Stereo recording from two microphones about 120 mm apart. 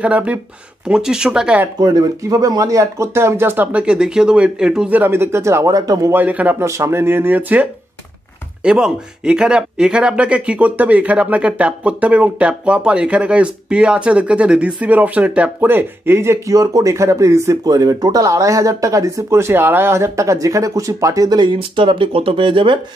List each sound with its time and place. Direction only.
0.0 s speech: 10° right (ahead or behind)
1.8 s speech: 30° right (ahead or behind)
6.1 s speech: 15° right (ahead or behind)
8.6 s speech: 5° right (ahead or behind); by 22.8 s 45° right (ahead or behind)